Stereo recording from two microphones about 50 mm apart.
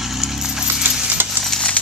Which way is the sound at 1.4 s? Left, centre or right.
Right.